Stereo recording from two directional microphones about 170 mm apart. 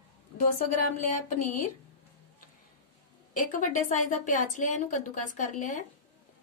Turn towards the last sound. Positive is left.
turn(degrees=45)  # may be behind; listen again after turning